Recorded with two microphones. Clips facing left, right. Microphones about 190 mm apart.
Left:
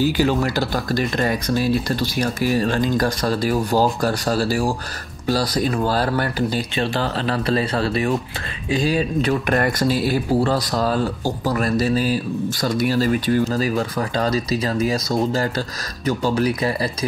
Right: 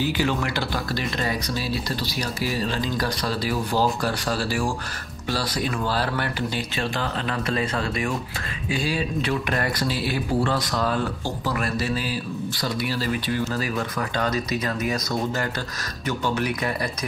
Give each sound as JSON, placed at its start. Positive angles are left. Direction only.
{"t": 0.0, "sound": "speech", "side_deg": 40}